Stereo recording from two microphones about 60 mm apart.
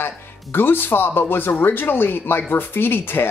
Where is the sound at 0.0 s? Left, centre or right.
Left.